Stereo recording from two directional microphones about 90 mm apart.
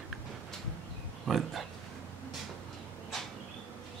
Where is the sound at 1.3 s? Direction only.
Centre (ahead or behind).